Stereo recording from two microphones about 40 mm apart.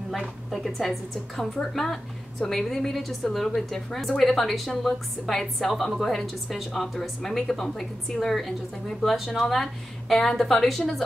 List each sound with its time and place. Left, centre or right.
0.2 s a woman's voice: centre